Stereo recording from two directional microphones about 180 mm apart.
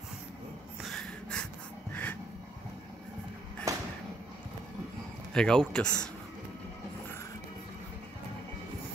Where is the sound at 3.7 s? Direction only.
20° right (ahead or behind).